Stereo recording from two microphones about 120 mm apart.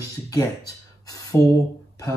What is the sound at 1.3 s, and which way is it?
Speech, 15° left (ahead or behind).